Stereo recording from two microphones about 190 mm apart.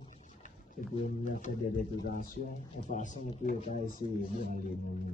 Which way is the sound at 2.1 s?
50° left (ahead or behind).